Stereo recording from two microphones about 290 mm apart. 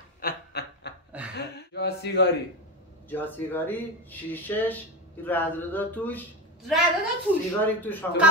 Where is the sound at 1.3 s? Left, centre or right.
Left.